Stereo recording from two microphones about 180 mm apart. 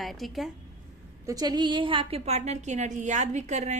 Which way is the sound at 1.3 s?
20° right (ahead or behind).